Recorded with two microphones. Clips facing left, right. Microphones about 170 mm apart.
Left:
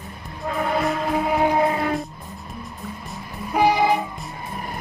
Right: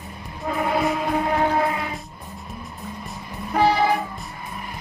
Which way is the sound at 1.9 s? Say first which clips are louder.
Left 8 dB; centre (ahead or behind).